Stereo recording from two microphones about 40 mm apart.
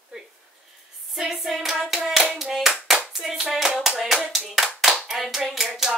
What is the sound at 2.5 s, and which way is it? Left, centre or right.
Hands, centre.